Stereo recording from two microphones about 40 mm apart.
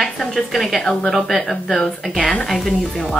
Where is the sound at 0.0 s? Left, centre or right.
Centre.